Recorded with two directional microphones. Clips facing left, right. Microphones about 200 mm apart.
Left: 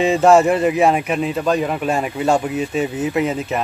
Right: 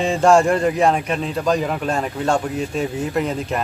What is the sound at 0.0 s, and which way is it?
A man's voice, 5° left (ahead or behind).